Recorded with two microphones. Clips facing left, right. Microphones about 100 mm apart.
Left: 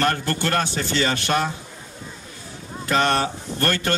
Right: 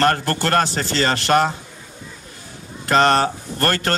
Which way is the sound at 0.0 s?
45° right (ahead or behind).